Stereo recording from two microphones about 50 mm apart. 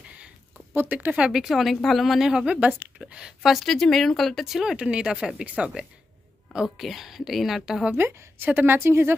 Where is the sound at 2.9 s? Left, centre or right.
Right.